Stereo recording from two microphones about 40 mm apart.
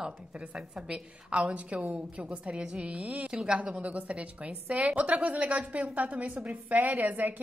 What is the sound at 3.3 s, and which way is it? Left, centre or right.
A woman's voice, right.